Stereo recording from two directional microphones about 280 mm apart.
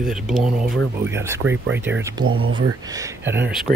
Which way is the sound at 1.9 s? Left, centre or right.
Right.